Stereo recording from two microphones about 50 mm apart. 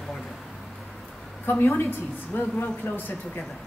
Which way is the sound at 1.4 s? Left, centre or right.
Left.